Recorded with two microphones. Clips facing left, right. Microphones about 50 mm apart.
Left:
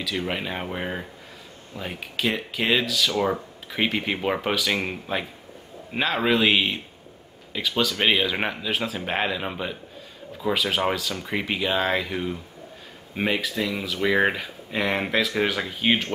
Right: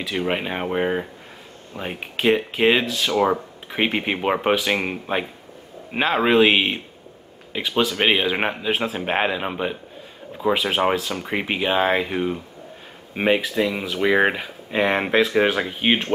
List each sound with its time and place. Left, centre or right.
0.0 s speech: right
3.2 s speech: centre